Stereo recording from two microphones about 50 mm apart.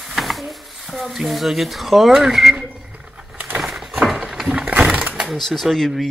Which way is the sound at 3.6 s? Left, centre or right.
Centre.